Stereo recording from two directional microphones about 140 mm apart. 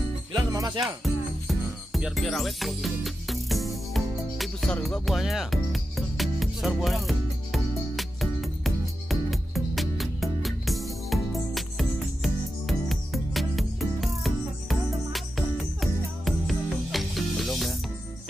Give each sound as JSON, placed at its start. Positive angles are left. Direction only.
{"t": 0.3, "sound": "music", "side_deg": -25}
{"t": 1.0, "sound": "music", "side_deg": 0}